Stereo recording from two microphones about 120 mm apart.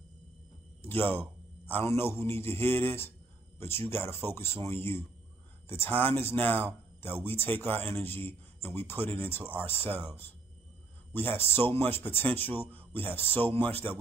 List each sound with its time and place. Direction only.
0.8 s a man's voice: 20° left (ahead or behind)
11.3 s speech: 20° left (ahead or behind)